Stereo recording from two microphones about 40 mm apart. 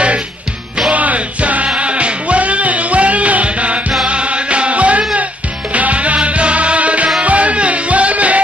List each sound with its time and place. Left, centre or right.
0.9 s music: right